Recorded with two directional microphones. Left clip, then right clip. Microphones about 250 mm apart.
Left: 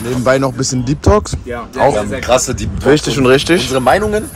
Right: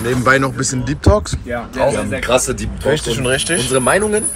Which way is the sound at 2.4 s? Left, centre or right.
Left.